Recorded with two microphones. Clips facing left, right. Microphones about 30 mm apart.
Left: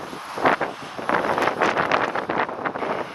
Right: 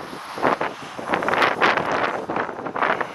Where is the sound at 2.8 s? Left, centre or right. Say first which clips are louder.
Right 9 dB; right.